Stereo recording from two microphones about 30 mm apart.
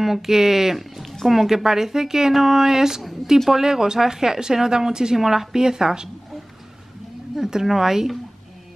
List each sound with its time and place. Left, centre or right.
0.0 s a woman's voice: centre
1.5 s speech: centre
5.1 s speech: centre
5.5 s speech: right
7.6 s speech: centre